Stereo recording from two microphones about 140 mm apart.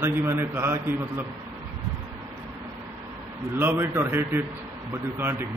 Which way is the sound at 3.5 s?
15° right (ahead or behind).